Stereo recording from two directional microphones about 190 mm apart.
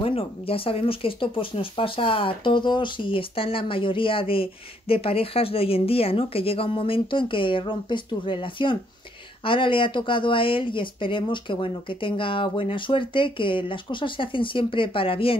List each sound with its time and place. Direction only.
0.0 s speech: 30° left (ahead or behind)